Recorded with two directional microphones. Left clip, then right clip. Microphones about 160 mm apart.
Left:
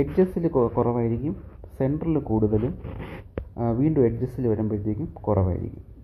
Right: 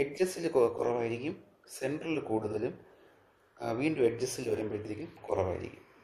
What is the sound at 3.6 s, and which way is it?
Speech, 20° right (ahead or behind).